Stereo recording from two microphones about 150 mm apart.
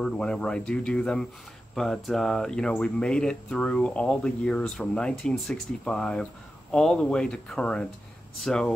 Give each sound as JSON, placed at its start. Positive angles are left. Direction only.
{"t": 0.0, "sound": "speech", "side_deg": 5}